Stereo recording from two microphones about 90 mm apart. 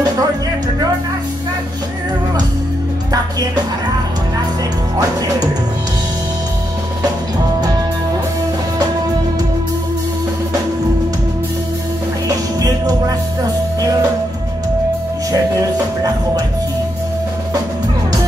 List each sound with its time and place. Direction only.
12.3 s music: 45° right (ahead or behind)
15.3 s music: 45° right (ahead or behind)